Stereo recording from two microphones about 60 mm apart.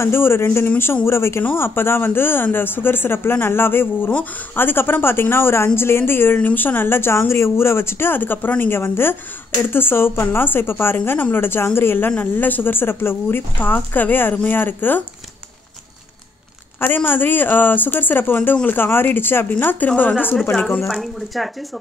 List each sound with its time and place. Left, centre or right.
0.0 s speech: left
16.8 s a woman's voice: left
20.9 s speech: centre